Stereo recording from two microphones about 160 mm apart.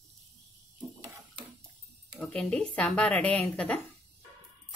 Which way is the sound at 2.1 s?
5° left (ahead or behind).